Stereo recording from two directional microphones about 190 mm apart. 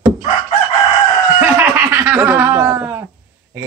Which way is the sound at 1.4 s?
10° right (ahead or behind).